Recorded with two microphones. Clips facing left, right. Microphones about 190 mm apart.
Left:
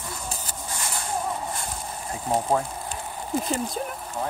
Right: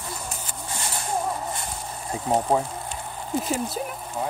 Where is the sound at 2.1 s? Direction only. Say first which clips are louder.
Right 2 dB; 15° right (ahead or behind).